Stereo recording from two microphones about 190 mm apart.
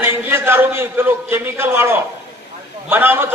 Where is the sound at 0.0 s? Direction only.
10° right (ahead or behind).